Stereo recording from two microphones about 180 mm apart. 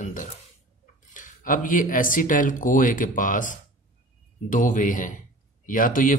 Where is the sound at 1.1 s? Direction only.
45° left (ahead or behind).